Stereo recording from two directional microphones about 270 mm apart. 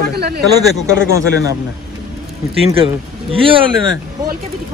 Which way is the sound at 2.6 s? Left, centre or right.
Centre.